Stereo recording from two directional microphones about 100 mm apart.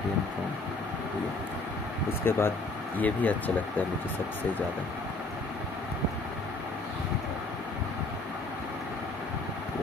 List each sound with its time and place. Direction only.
2.2 s speech: 25° left (ahead or behind)